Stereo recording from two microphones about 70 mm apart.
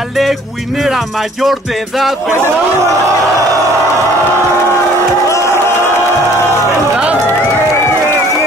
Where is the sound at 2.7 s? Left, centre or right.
Right.